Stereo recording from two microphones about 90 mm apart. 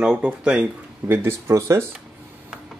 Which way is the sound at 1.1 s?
30° right (ahead or behind).